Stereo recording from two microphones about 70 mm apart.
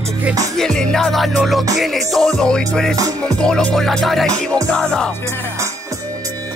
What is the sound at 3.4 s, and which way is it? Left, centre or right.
Music, centre.